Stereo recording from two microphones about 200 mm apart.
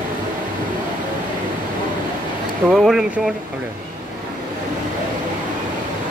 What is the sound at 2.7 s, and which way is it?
Speech, centre (ahead or behind).